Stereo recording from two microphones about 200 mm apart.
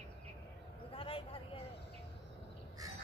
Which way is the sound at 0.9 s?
25° left (ahead or behind).